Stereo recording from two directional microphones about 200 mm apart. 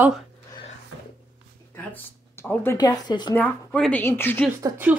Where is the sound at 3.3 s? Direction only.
5° left (ahead or behind).